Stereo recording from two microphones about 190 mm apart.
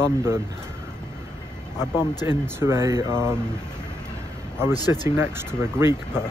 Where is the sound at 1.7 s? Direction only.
20° left (ahead or behind).